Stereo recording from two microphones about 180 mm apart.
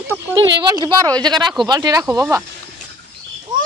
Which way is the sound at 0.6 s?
25° right (ahead or behind).